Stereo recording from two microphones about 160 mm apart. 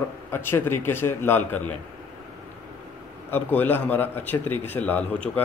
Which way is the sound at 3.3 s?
10° left (ahead or behind).